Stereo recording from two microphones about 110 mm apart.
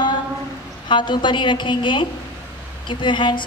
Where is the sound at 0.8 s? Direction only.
45° left (ahead or behind).